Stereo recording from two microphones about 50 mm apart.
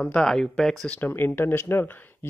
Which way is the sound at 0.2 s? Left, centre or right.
Centre.